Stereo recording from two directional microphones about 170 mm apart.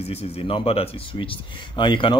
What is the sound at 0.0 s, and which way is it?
Speech, 35° left (ahead or behind).